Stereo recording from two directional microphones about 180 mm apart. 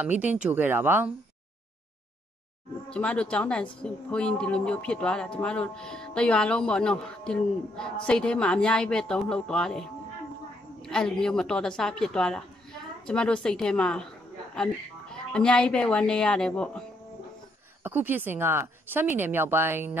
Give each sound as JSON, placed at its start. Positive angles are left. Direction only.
{"t": 0.0, "sound": "speech", "side_deg": -10}
{"t": 2.9, "sound": "a woman's voice", "side_deg": 5}
{"t": 17.8, "sound": "speech", "side_deg": -10}